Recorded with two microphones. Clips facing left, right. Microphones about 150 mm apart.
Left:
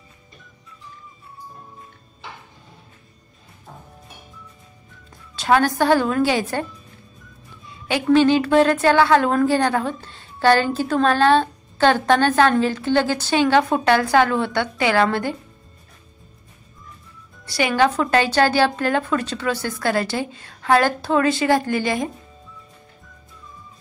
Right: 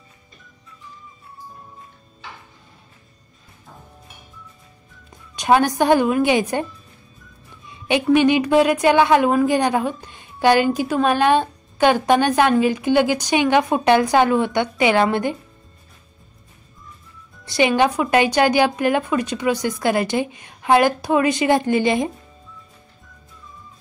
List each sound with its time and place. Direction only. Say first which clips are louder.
5.3 s a woman's voice: right 1 dB; 15° right (ahead or behind)
17.5 s a woman's voice: right 2 dB; 20° right (ahead or behind)